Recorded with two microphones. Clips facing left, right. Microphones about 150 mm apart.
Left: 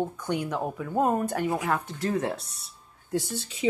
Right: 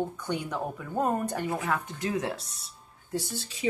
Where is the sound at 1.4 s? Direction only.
20° left (ahead or behind).